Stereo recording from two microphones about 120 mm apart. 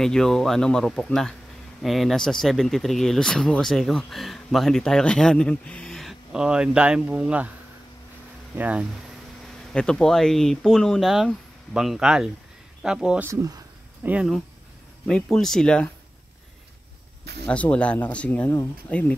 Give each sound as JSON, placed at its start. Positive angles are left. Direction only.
{"t": 0.0, "sound": "speech", "side_deg": 5}
{"t": 8.5, "sound": "speech", "side_deg": -10}
{"t": 9.7, "sound": "speech", "side_deg": 5}
{"t": 13.3, "sound": "speech", "side_deg": -30}
{"t": 14.0, "sound": "speech", "side_deg": -15}
{"t": 15.0, "sound": "speech", "side_deg": 5}
{"t": 17.5, "sound": "speech", "side_deg": 10}